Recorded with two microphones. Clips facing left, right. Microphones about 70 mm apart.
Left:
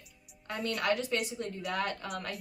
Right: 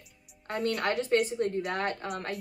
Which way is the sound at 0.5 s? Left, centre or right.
Right.